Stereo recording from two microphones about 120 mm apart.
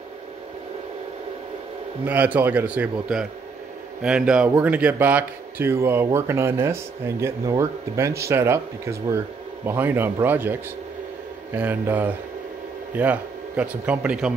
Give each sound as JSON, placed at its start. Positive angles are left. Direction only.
{"t": 2.0, "sound": "a man's voice", "side_deg": -15}